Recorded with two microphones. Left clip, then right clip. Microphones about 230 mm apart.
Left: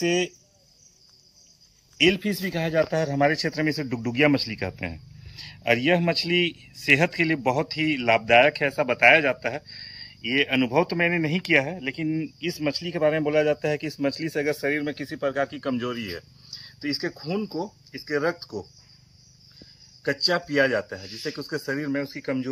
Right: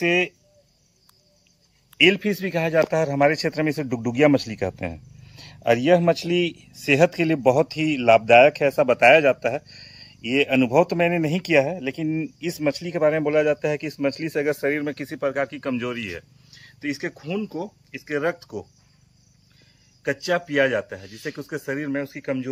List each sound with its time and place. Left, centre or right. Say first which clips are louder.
0.0 s speech: right 4 dB; centre
2.0 s speech: right 4 dB; centre
17.9 s speech: right 1 dB; centre
20.1 s speech: even; centre